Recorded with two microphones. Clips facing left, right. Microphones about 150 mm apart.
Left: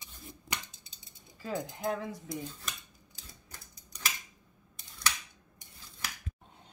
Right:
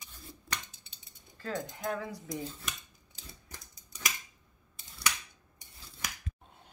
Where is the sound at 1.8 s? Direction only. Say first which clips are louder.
Left 2 dB; 25° left (ahead or behind).